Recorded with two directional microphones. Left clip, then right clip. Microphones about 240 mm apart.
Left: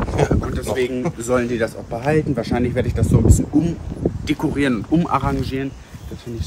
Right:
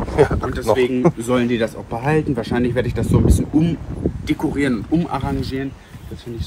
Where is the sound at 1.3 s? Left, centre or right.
Right.